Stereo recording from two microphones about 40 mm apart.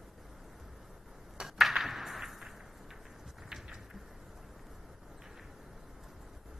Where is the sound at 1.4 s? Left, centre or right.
Centre.